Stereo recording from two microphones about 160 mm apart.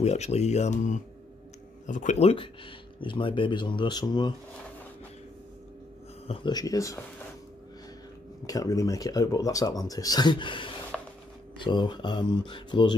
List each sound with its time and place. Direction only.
0.0 s speech: 40° left (ahead or behind); by 4.3 s 25° left (ahead or behind)
6.2 s speech: 30° left (ahead or behind)
8.5 s speech: 20° left (ahead or behind)
10.9 s a sound: centre (ahead or behind)
11.6 s speech: 30° left (ahead or behind)